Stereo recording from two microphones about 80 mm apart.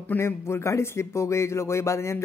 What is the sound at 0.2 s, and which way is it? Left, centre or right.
A man's voice, left.